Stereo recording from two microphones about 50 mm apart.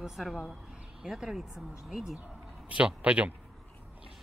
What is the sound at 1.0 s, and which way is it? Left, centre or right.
Speech, centre.